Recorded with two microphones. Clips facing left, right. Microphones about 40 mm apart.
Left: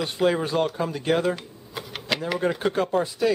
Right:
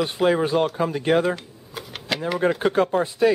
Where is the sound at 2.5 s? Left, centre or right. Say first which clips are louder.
Right 4 dB; centre.